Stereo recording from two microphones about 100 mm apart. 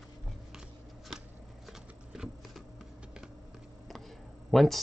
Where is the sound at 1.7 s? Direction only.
5° right (ahead or behind).